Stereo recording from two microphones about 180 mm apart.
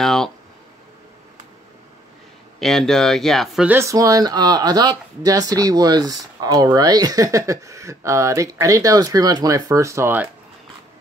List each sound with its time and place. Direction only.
0.0 s a sound: centre (ahead or behind)
2.6 s speech: centre (ahead or behind)
3.7 s speech: 15° right (ahead or behind)